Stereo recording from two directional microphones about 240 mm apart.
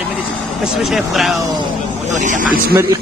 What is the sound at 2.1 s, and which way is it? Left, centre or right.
Speech, right.